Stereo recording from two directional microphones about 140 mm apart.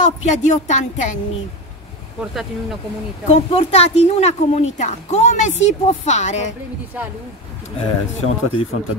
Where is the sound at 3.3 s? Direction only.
45° left (ahead or behind).